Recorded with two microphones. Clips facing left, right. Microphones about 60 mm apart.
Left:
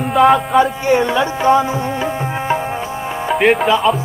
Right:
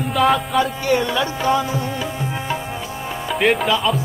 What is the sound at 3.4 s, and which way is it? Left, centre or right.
Speech, centre.